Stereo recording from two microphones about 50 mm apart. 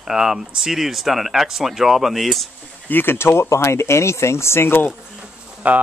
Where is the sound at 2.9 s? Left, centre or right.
Left.